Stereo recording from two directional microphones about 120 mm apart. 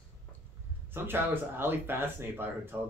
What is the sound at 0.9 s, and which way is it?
Speech, 20° right (ahead or behind).